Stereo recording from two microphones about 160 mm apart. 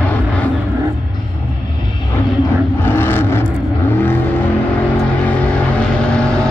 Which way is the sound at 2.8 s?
15° left (ahead or behind).